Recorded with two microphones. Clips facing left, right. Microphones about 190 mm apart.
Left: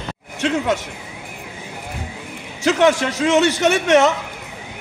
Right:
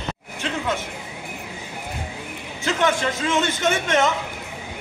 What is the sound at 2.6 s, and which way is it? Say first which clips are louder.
A man's voice: left 6 dB; 75° left (ahead or behind).